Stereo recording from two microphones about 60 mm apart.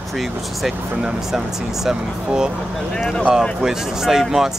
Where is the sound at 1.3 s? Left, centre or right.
Centre.